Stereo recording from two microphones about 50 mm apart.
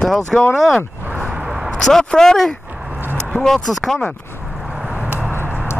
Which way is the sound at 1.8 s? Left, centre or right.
Centre.